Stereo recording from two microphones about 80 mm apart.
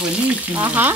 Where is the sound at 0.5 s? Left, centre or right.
Right.